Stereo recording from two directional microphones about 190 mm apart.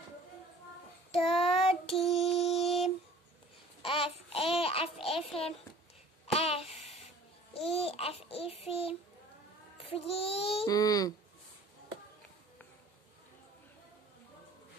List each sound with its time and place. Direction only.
1.3 s child singing: 30° left (ahead or behind)
1.9 s child singing: centre (ahead or behind)
2.3 s mantra: 35° left (ahead or behind)
3.8 s babbling: 30° left (ahead or behind)
5.0 s a sound: 30° left (ahead or behind)
7.5 s babbling: 30° left (ahead or behind)
9.8 s speech: 30° left (ahead or behind)
10.7 s speech: 20° left (ahead or behind)